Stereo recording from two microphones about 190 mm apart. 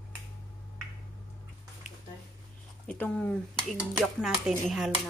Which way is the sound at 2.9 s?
5° left (ahead or behind).